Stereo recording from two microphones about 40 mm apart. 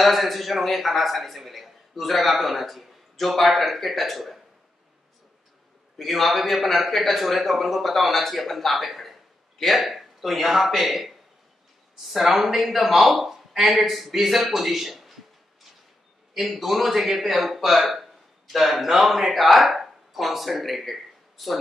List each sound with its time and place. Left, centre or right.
0.0 s a man's voice: centre
5.9 s a man's voice: centre
16.3 s a man's voice: centre